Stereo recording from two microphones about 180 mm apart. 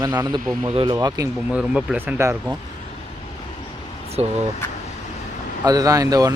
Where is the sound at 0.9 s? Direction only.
20° right (ahead or behind).